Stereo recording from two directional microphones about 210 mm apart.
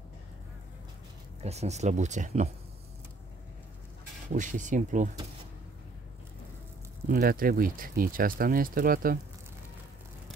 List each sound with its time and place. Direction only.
1.4 s speech: 30° right (ahead or behind)
4.3 s speech: 35° right (ahead or behind)
7.1 s speech: 45° right (ahead or behind)